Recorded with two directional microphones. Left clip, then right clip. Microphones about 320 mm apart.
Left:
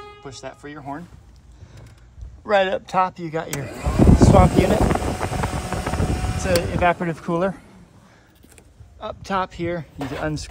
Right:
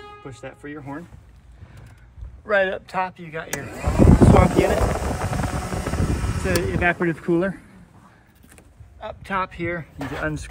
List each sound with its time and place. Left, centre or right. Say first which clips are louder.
0.2 s speech: left 3 dB; centre
2.8 s speech: left 5 dB; centre
3.4 s speech: even; centre
4.7 s a sound: left 2 dB; centre
6.7 s speech: left 1 dB; centre
9.0 s speech: left 1 dB; centre